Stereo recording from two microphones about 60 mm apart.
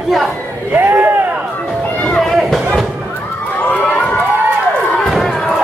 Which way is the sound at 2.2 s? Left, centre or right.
Centre.